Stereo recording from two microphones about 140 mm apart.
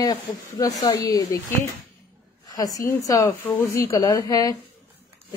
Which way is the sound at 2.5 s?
25° left (ahead or behind).